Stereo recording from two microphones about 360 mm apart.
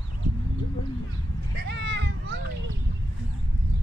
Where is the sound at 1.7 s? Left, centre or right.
Right.